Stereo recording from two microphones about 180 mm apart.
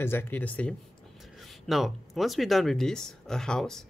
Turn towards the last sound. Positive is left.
turn(degrees=5)  # may be behind; listen again after turning